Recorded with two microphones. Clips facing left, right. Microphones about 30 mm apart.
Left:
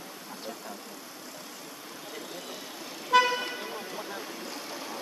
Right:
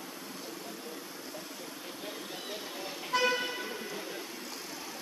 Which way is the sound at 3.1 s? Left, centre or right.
Left.